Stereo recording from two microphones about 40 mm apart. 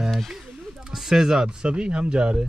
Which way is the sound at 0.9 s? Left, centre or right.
Centre.